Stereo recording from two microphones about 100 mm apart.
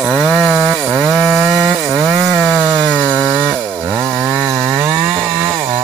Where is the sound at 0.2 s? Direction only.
Centre (ahead or behind).